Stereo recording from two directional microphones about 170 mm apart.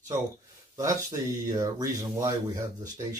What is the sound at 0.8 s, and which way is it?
Speech, 20° right (ahead or behind).